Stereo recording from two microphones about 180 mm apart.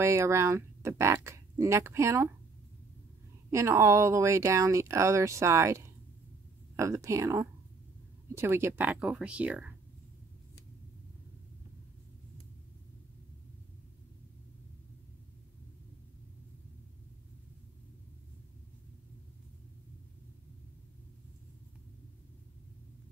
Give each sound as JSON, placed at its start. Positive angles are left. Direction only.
{"t": 0.0, "sound": "a woman's voice", "side_deg": -15}
{"t": 3.4, "sound": "a woman's voice", "side_deg": -15}